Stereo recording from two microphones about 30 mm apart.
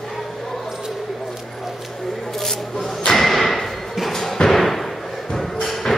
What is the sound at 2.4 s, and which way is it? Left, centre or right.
Arrow, centre.